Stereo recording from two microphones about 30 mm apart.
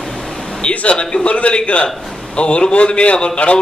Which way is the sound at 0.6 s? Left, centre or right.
Left.